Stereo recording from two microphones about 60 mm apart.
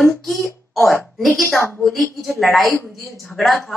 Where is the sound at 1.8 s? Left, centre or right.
Centre.